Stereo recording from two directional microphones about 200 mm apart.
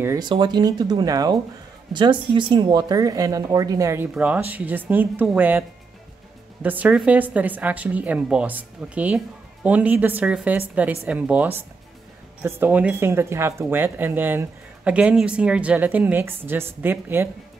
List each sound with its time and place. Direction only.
0.0 s speech: 20° right (ahead or behind)